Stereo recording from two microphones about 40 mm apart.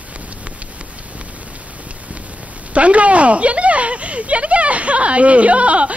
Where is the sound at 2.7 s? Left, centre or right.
Right.